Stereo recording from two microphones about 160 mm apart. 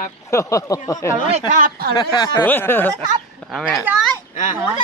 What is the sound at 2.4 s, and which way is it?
Speech, 15° left (ahead or behind).